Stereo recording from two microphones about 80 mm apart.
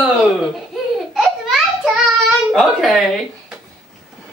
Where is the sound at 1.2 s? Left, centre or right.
Centre.